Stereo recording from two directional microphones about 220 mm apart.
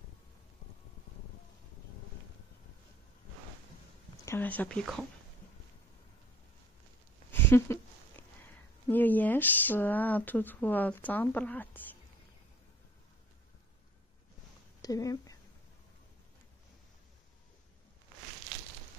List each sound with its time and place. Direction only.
4.3 s speech: 10° left (ahead or behind)
7.2 s a sound: 10° left (ahead or behind)
8.8 s speech: 10° left (ahead or behind)
14.8 s speech: 15° left (ahead or behind)